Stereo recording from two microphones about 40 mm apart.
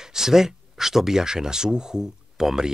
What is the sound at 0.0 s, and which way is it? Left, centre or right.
Speech, centre.